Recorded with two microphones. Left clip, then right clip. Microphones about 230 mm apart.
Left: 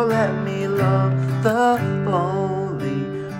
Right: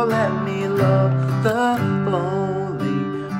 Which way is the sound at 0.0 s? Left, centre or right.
Centre.